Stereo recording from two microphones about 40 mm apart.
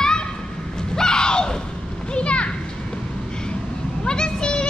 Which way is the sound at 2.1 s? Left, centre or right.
Left.